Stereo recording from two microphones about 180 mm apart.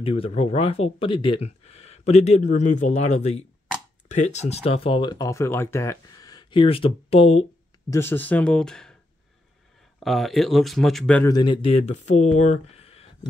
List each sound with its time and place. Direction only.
0.0 s speech: 30° left (ahead or behind)
7.9 s speech: 10° left (ahead or behind)
9.9 s speech: centre (ahead or behind)
11.2 s speech: 25° left (ahead or behind)